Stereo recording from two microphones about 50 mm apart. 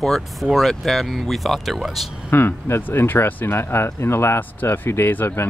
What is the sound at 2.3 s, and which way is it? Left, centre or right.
Speech, left.